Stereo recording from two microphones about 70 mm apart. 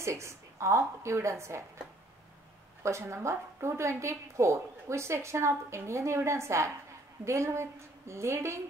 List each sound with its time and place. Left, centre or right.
0.0 s a woman's voice: right
2.8 s a woman's voice: right